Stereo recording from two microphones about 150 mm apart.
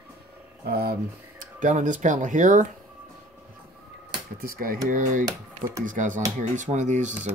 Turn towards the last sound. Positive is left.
turn(degrees=-55)  # may be behind; listen again after turning